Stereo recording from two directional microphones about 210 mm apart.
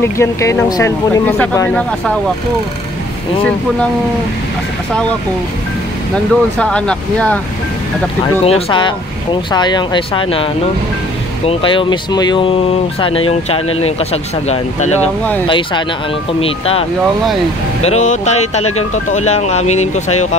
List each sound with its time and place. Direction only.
0.0 s speech: 15° left (ahead or behind)
6.1 s speech: 5° left (ahead or behind)
8.5 s speech: 25° left (ahead or behind)
17.8 s speech: 35° left (ahead or behind)